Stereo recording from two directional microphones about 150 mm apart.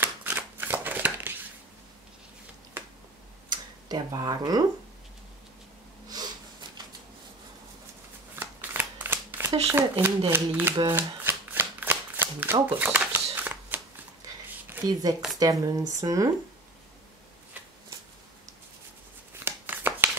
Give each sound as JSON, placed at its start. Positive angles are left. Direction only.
{"t": 0.0, "sound": "shuffling cards", "side_deg": -15}
{"t": 3.4, "sound": "speech", "side_deg": -25}
{"t": 6.0, "sound": "snort", "side_deg": -25}
{"t": 8.4, "sound": "shuffling cards", "side_deg": -10}
{"t": 9.8, "sound": "speech", "side_deg": -15}
{"t": 10.9, "sound": "shuffling cards", "side_deg": -15}
{"t": 14.7, "sound": "speech", "side_deg": -20}
{"t": 19.4, "sound": "a sound", "side_deg": -10}